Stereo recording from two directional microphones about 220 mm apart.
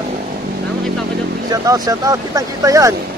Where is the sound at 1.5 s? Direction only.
15° right (ahead or behind).